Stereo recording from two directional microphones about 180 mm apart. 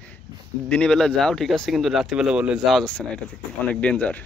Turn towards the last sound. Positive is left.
turn(degrees=10)  # may be behind; listen again after turning